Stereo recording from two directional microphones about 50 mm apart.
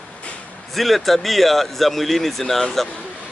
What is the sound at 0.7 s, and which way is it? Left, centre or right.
Speech, centre.